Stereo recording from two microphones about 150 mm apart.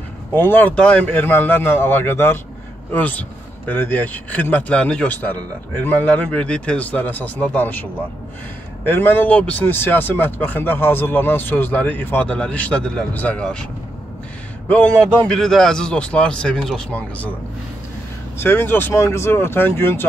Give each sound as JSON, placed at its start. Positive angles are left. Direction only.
{"t": 0.4, "sound": "speech", "side_deg": 15}
{"t": 14.7, "sound": "speech", "side_deg": 10}
{"t": 18.4, "sound": "speech", "side_deg": 15}